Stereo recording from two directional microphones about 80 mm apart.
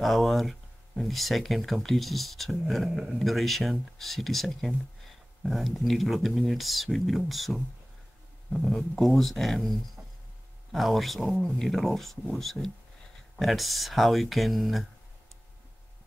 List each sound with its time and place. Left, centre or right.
0.0 s speech: centre
8.5 s speech: centre
10.0 s a sound: centre
10.7 s speech: centre